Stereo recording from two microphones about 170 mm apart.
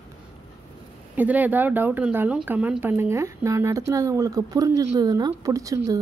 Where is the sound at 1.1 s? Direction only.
10° right (ahead or behind).